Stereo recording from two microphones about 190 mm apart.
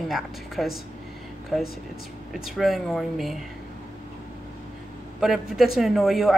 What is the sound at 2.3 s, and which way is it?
Speech, centre (ahead or behind).